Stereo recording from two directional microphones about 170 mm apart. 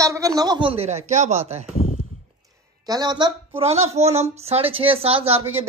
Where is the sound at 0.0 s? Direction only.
20° right (ahead or behind).